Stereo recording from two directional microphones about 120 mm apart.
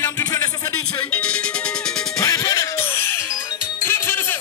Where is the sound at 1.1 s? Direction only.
10° left (ahead or behind).